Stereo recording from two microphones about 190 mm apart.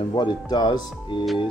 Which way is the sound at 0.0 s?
25° left (ahead or behind).